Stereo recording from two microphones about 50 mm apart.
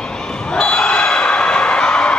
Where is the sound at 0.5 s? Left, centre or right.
Centre.